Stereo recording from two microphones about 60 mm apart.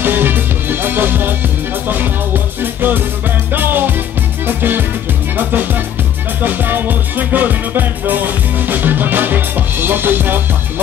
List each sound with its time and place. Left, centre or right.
0.0 s music: right